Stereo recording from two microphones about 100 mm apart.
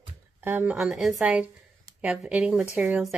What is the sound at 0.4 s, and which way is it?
Speech, 20° right (ahead or behind).